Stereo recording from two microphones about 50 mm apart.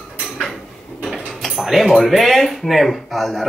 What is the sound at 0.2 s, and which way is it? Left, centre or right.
Dishes, centre.